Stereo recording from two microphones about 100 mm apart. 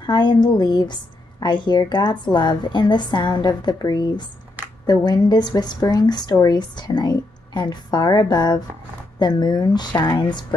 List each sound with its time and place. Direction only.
0.0 s a woman's voice: 50° left (ahead or behind)